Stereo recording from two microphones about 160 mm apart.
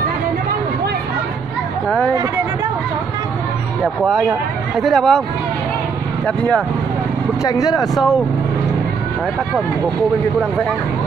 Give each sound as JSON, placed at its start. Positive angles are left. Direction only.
{"t": 1.9, "sound": "speech", "side_deg": 5}
{"t": 4.0, "sound": "speech", "side_deg": -5}
{"t": 6.2, "sound": "speech", "side_deg": 5}
{"t": 7.4, "sound": "speech", "side_deg": 20}
{"t": 7.7, "sound": "speech", "side_deg": 0}